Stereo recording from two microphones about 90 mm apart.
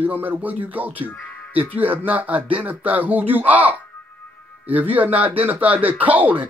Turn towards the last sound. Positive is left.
turn(degrees=-15)  # may be behind; listen again after turning